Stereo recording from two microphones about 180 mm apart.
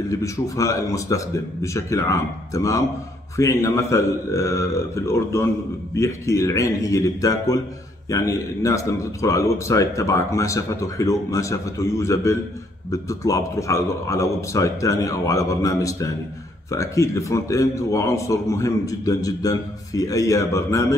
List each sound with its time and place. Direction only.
0.1 s a man's voice: 15° left (ahead or behind)